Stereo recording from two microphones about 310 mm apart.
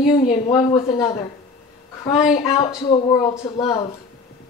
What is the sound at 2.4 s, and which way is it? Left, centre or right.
Speech, centre.